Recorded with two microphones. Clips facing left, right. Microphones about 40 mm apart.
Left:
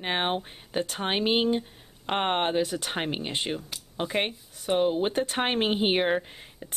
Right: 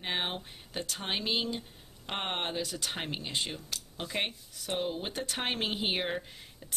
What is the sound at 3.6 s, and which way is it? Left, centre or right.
Speech, centre.